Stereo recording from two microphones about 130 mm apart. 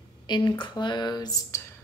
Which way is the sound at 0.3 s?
35° left (ahead or behind).